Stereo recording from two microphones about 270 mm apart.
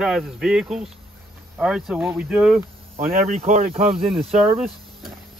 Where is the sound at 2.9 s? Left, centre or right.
Right.